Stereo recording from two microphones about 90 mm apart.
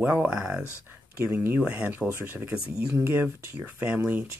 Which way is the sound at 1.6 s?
15° right (ahead or behind).